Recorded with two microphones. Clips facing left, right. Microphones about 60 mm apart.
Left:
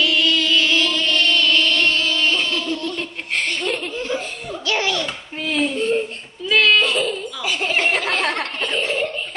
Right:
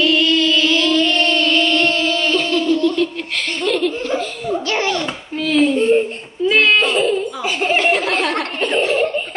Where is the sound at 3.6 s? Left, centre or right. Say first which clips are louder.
Right 6 dB; left.